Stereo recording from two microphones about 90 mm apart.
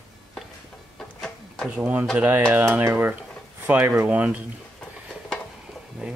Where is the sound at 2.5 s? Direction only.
20° right (ahead or behind).